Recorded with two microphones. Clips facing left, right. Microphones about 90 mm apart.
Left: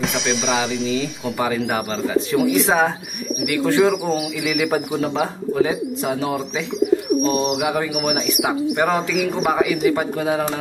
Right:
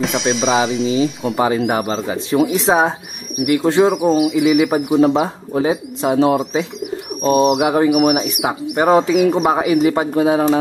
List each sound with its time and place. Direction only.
0.0 s speech: centre (ahead or behind)
1.3 s speech: 30° right (ahead or behind)
7.2 s bird: 50° right (ahead or behind)
7.6 s speech: 35° right (ahead or behind)
8.4 s speech: 20° right (ahead or behind)